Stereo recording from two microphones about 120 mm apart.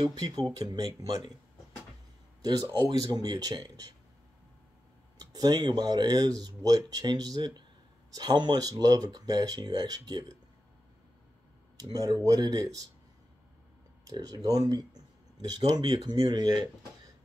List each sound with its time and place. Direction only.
0.1 s speech: 35° right (ahead or behind)
2.8 s speech: 30° right (ahead or behind)
5.2 s speech: 35° right (ahead or behind)
11.7 s speech: 30° right (ahead or behind)
14.0 s speech: 30° right (ahead or behind)